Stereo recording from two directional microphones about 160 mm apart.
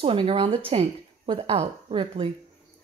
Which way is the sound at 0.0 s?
35° right (ahead or behind).